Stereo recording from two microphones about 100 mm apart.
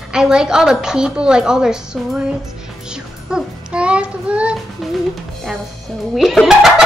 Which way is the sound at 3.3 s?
10° right (ahead or behind).